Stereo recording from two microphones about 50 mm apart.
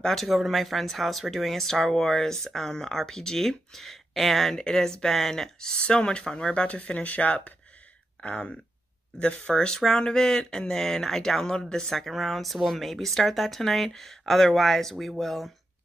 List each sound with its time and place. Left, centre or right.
0.0 s speech: centre
4.6 s speech: centre